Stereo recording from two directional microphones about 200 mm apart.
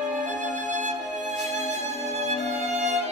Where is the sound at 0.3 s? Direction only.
40° right (ahead or behind).